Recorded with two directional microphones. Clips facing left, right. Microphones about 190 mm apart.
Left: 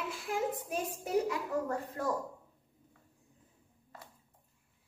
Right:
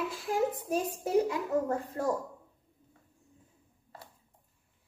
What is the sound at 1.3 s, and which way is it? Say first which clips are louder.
Speech: right 4 dB; 25° right (ahead or behind).